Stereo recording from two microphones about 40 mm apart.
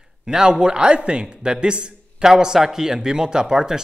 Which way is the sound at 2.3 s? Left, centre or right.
Centre.